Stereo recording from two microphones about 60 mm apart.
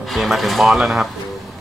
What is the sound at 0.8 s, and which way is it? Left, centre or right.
Speech, centre.